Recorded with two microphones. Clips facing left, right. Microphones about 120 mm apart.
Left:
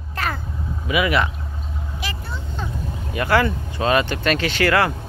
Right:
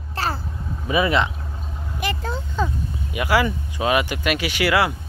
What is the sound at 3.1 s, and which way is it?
Speech, 10° right (ahead or behind).